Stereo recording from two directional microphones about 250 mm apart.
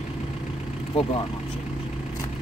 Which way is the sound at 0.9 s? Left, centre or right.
Left.